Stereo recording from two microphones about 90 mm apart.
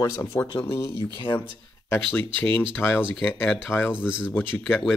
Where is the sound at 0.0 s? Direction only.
30° left (ahead or behind).